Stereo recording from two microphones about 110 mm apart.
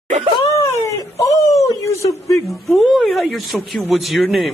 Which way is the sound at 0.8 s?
30° left (ahead or behind).